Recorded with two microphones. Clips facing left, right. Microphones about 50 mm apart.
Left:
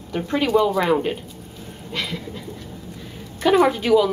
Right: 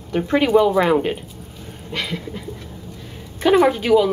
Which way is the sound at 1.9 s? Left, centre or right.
Centre.